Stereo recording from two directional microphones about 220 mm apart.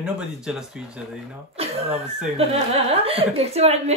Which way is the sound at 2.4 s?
25° right (ahead or behind).